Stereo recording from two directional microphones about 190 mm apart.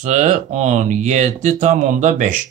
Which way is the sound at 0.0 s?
40° right (ahead or behind).